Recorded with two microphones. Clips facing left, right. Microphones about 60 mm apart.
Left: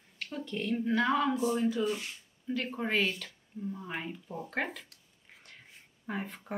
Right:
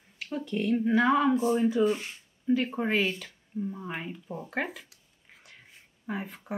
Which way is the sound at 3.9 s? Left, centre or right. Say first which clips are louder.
Right 2 dB; centre.